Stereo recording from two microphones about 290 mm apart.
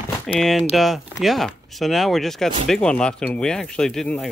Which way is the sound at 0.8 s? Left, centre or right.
Centre.